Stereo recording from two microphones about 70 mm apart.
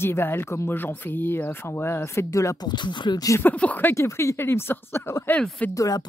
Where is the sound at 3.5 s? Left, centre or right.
Left.